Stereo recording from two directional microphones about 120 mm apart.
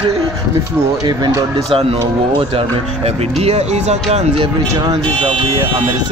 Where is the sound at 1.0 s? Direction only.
35° right (ahead or behind).